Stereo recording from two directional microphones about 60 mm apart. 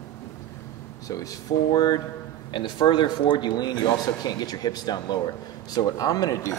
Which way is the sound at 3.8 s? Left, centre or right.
Left.